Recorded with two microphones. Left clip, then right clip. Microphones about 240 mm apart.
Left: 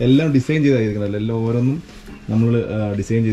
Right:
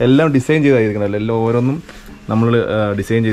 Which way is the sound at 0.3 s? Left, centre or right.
Centre.